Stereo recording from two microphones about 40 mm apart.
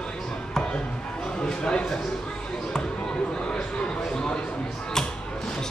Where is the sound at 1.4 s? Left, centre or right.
Left.